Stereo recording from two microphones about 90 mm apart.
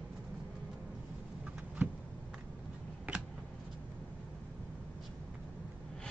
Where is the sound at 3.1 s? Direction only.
20° right (ahead or behind).